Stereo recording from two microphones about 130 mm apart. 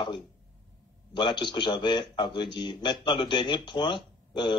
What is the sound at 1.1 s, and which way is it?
Speech, 35° left (ahead or behind).